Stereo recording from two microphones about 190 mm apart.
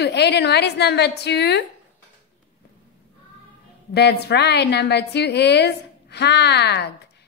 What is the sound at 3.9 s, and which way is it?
A woman's voice, 60° left (ahead or behind).